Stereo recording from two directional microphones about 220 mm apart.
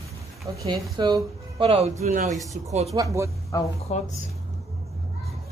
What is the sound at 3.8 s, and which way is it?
Speech, 30° left (ahead or behind).